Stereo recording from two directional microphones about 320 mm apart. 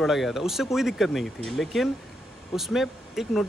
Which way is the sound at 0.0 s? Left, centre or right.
Centre.